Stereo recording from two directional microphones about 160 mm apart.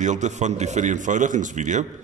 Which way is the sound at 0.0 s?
50° right (ahead or behind).